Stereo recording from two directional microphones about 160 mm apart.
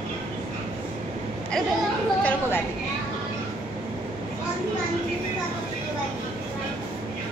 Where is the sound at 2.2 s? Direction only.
15° left (ahead or behind).